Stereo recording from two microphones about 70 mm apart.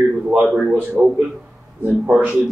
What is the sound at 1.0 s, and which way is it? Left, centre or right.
Speech, centre.